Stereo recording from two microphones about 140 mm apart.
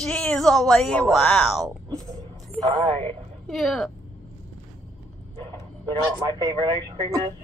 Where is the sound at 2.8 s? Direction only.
40° right (ahead or behind).